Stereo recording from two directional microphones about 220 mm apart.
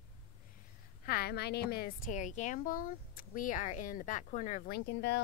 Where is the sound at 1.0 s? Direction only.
45° left (ahead or behind).